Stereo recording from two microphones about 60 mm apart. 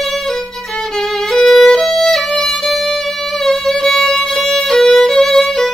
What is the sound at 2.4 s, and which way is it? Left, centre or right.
Music, centre.